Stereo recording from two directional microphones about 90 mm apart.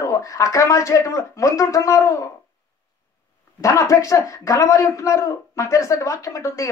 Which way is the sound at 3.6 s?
35° left (ahead or behind).